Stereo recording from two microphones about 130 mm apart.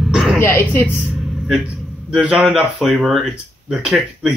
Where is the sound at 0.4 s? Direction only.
15° left (ahead or behind).